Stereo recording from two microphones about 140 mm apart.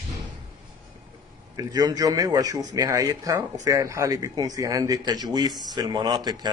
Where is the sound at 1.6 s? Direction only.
25° right (ahead or behind).